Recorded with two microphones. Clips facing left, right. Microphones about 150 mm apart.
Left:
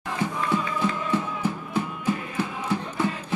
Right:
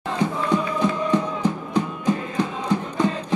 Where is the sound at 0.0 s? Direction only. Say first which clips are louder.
Right 4 dB; 20° right (ahead or behind).